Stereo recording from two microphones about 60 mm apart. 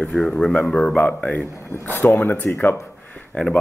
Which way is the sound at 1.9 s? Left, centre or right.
Left.